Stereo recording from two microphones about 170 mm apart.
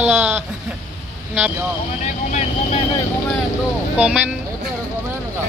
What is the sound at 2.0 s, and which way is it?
Vehicle, 45° left (ahead or behind).